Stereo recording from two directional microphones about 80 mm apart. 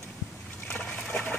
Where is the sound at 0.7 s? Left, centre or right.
Centre.